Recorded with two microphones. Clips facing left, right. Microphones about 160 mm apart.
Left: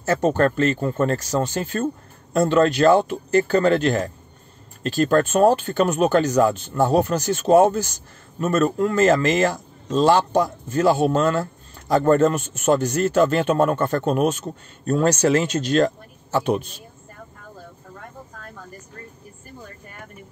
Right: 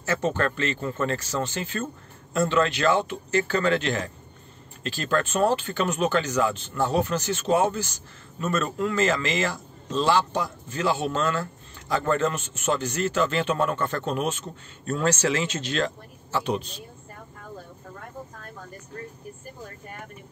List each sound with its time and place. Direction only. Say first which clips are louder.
0.0 s a man's voice: left 6 dB; 45° left (ahead or behind)